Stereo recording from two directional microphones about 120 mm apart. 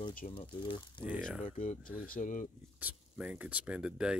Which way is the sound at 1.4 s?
90° left.